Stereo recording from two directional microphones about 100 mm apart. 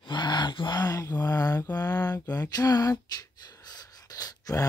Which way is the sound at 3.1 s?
40° left (ahead or behind).